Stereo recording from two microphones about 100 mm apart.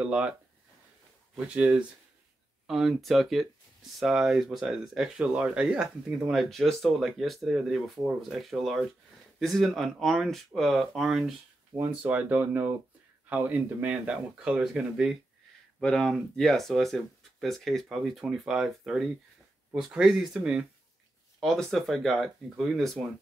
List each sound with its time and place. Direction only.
0.0 s speech: 10° right (ahead or behind)
11.9 s speech: 15° right (ahead or behind)
15.8 s speech: 5° left (ahead or behind)